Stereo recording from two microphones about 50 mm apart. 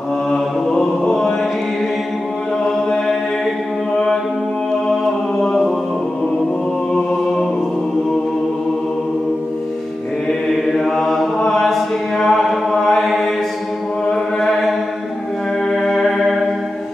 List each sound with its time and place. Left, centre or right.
0.3 s mantra: centre
3.9 s music: centre
5.4 s music: centre
10.8 s mantra: centre
11.5 s a sound: centre
12.8 s mantra: centre
14.0 s mantra: left
15.7 s music: centre